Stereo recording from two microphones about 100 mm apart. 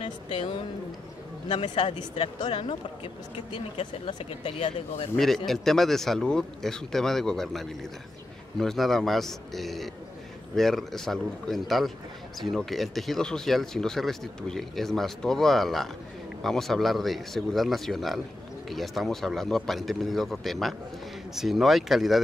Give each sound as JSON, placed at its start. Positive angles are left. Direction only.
{"t": 0.0, "sound": "speech", "side_deg": 60}
{"t": 4.2, "sound": "speech", "side_deg": 75}
{"t": 5.1, "sound": "speech", "side_deg": 5}